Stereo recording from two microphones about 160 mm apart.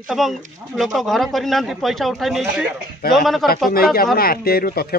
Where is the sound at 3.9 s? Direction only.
70° left (ahead or behind).